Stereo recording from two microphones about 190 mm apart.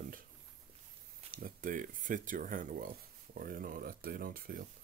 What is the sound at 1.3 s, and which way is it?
Speech, 50° right (ahead or behind).